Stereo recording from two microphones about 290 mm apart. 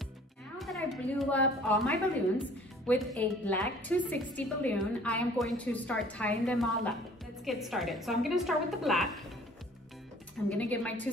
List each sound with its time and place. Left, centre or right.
0.6 s a woman's voice: centre
2.9 s a woman's voice: centre
10.5 s a woman's voice: centre